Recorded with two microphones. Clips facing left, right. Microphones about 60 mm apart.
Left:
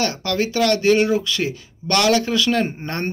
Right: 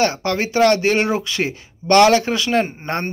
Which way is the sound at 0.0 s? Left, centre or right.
Right.